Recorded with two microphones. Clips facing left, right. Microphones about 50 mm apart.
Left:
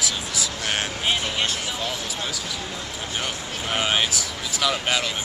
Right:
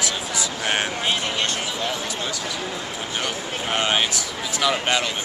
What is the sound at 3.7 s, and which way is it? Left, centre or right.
Speech, centre.